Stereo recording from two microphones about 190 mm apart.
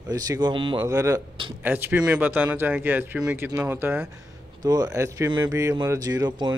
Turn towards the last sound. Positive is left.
turn(degrees=-20)  # may be behind; listen again after turning